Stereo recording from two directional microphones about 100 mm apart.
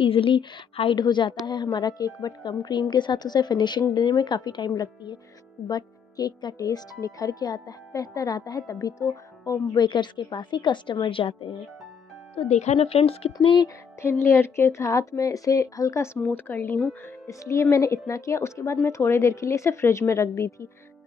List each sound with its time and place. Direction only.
0.0 s a woman's voice: 60° left (ahead or behind); by 9.8 s 35° left (ahead or behind)
9.8 s a woman's voice: 50° left (ahead or behind)
12.4 s speech: 90° left; by 13.6 s 75° left (ahead or behind)
14.0 s speech: 25° left (ahead or behind)
17.3 s speech: 30° left (ahead or behind)